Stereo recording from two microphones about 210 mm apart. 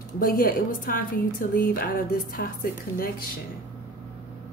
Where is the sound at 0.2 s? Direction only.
45° left (ahead or behind).